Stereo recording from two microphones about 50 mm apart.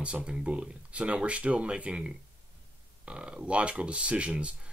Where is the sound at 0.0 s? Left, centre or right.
Right.